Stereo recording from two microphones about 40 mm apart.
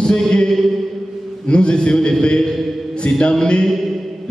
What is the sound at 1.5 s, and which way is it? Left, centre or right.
Speech, left.